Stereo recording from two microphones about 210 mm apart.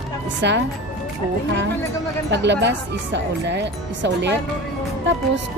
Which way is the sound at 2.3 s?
55° right (ahead or behind).